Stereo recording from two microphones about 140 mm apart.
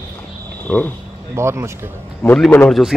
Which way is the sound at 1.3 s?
20° right (ahead or behind).